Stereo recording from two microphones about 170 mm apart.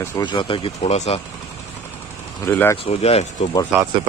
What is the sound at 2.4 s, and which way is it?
Speech, 15° left (ahead or behind).